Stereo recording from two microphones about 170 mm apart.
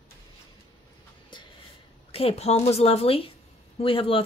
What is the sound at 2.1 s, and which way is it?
Speech, 35° left (ahead or behind).